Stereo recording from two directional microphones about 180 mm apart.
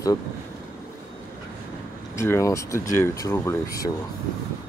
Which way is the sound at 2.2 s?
15° left (ahead or behind).